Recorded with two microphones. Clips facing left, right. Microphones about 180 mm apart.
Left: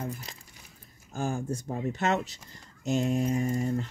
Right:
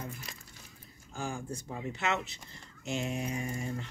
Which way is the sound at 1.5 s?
45° left (ahead or behind).